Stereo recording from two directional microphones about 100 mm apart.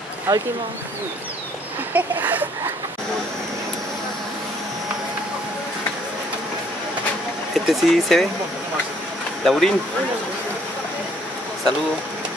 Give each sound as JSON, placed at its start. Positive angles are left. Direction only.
{"t": 0.3, "sound": "speech", "side_deg": -30}
{"t": 2.0, "sound": "speech", "side_deg": -20}
{"t": 7.5, "sound": "speech", "side_deg": 0}
{"t": 9.4, "sound": "speech", "side_deg": 5}